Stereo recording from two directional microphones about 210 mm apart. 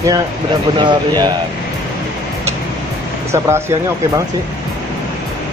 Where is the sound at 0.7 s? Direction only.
20° right (ahead or behind).